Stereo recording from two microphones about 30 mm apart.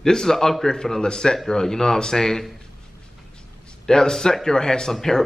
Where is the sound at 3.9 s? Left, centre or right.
Left.